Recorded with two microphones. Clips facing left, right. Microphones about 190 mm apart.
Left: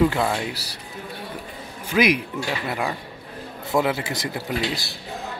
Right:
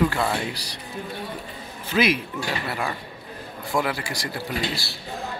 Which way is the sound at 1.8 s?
15° left (ahead or behind).